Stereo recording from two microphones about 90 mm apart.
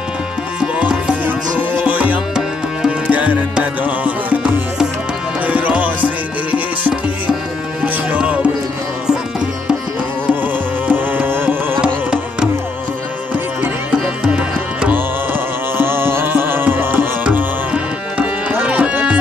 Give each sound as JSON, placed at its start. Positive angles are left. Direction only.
{"t": 0.6, "sound": "music", "side_deg": -10}
{"t": 10.9, "sound": "music", "side_deg": -20}
{"t": 11.8, "sound": "carnatic music", "side_deg": -10}
{"t": 14.2, "sound": "tabla", "side_deg": -10}
{"t": 15.8, "sound": "tabla", "side_deg": -25}